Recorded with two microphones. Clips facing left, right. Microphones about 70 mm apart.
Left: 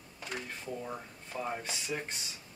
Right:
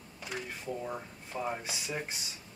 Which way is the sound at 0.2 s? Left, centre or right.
Centre.